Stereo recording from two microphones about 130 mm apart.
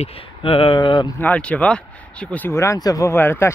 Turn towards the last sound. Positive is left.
turn(degrees=20)  # may be behind; listen again after turning